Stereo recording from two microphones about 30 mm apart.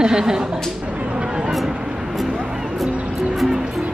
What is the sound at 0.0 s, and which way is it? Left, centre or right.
Speech, right.